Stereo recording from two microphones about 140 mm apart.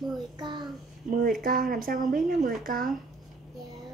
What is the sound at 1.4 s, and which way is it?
Speech, 90° right.